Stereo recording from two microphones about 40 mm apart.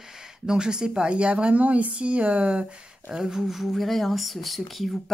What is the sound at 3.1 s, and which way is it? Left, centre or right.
Speech, centre.